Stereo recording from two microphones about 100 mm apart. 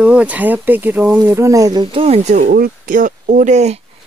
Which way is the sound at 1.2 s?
30° right (ahead or behind).